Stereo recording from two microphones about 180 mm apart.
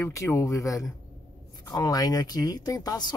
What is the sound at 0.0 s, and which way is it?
A man's voice, 15° left (ahead or behind).